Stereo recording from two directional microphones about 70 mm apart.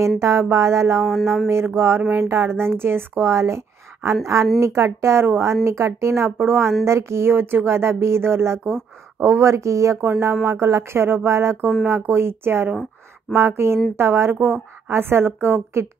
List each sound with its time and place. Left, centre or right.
0.0 s speech: right
9.9 s speech: right